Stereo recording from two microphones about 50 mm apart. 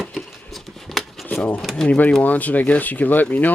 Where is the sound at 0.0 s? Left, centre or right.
Centre.